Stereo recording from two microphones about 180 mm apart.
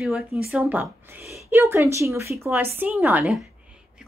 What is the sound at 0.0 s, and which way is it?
A woman's voice, 5° right (ahead or behind).